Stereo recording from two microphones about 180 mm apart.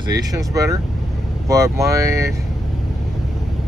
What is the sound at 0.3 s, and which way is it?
Speech, 20° right (ahead or behind).